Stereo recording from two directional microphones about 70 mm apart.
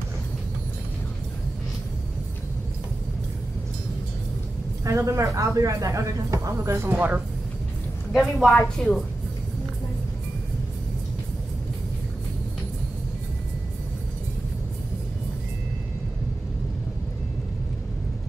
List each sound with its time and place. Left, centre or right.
4.8 s speech: right
6.9 s speech: right
8.1 s a woman's voice: centre